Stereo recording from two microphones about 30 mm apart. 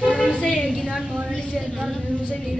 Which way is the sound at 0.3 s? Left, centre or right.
Left.